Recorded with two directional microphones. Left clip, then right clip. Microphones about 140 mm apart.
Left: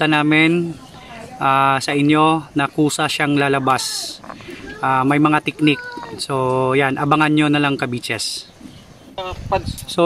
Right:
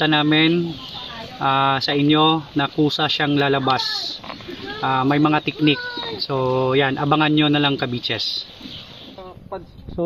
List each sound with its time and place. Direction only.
0.0 s speech: 15° left (ahead or behind)